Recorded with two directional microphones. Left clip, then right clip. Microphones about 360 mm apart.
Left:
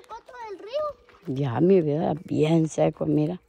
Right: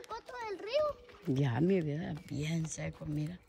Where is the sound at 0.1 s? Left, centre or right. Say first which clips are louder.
Left 4 dB; centre.